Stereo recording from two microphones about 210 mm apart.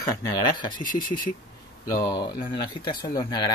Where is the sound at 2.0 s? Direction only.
20° left (ahead or behind).